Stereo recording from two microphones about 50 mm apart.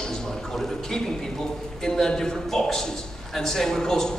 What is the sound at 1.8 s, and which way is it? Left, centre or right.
A man's voice, centre.